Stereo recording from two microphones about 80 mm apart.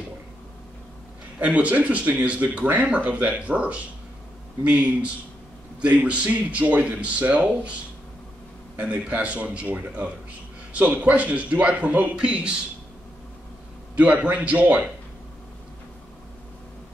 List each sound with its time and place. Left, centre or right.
1.4 s speech: centre
8.7 s speech: centre
13.9 s speech: centre